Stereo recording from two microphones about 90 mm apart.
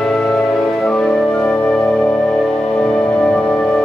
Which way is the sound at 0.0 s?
10° left (ahead or behind).